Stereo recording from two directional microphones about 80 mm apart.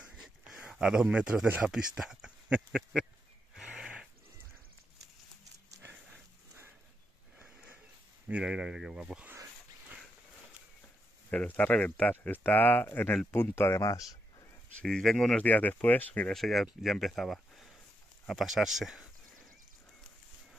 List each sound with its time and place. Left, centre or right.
0.0 s a sound: centre
1.6 s speech: centre
3.5 s a sound: centre
7.3 s sniff: right
8.3 s speech: centre
11.2 s speech: centre; by 13.8 s left
14.8 s speech: centre
15.4 s speech: left
16.3 s speech: centre